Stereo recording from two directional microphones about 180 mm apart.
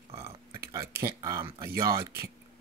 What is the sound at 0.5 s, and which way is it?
Speech, 20° right (ahead or behind).